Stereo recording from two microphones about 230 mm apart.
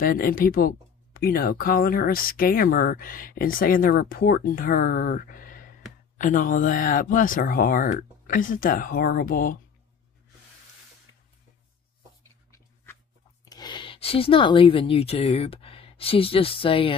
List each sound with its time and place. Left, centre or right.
0.0 s speech: left
12.2 s a sound: centre
13.5 s speech: centre